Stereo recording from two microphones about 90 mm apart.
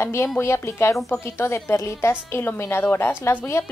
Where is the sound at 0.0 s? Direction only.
30° left (ahead or behind).